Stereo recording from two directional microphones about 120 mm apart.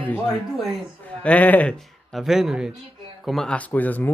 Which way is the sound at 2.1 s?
5° right (ahead or behind).